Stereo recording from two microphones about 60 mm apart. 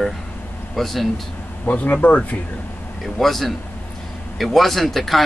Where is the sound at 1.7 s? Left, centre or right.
Left.